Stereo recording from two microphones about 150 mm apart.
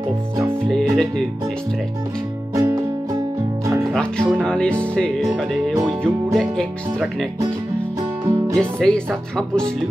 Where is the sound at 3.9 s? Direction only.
5° left (ahead or behind).